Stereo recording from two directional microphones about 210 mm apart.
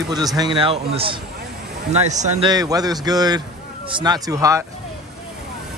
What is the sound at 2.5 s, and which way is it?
Speech, 15° right (ahead or behind).